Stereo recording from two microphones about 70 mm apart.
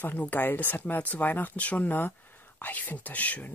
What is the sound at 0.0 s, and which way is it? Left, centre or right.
A woman's voice, left.